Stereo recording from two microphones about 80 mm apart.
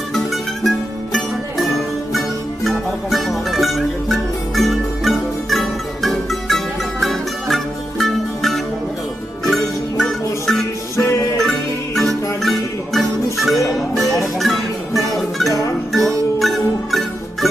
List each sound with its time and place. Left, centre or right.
0.1 s music: centre
11.0 s music: left
11.3 s music: centre
16.3 s music: centre